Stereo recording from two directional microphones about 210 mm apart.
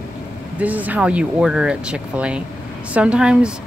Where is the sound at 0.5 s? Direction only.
5° right (ahead or behind).